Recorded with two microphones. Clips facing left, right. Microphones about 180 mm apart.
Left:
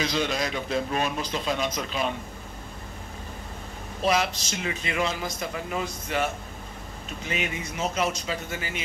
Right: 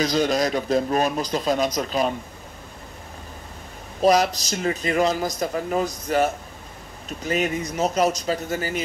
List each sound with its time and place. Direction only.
0.0 s a man's voice: 40° right (ahead or behind)
4.0 s a man's voice: 40° right (ahead or behind)